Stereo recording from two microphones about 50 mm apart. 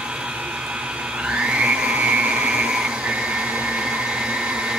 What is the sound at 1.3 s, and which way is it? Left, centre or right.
Blender, centre.